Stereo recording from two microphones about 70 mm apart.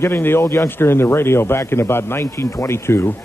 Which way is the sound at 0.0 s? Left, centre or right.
Left.